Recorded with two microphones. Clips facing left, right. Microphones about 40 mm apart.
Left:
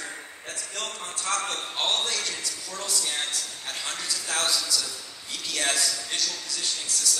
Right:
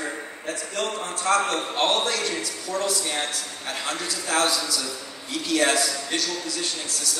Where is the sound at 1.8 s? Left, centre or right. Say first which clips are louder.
Right 4 dB; centre.